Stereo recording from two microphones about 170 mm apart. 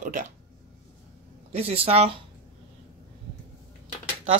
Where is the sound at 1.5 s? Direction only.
35° right (ahead or behind).